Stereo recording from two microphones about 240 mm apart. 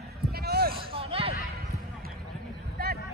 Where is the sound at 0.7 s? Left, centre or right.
Right.